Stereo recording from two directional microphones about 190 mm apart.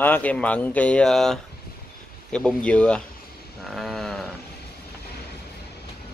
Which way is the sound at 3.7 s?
Centre (ahead or behind).